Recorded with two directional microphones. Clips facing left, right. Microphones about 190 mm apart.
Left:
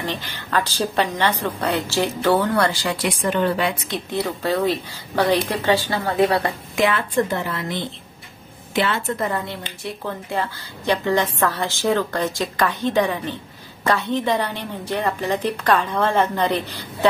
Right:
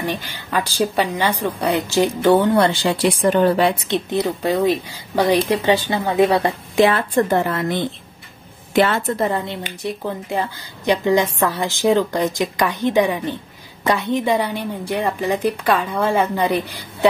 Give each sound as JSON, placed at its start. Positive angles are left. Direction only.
{"t": 0.0, "sound": "a woman's voice", "side_deg": -10}
{"t": 4.1, "sound": "a woman's voice", "side_deg": -15}
{"t": 7.2, "sound": "a woman's voice", "side_deg": -50}
{"t": 9.2, "sound": "a woman's voice", "side_deg": -25}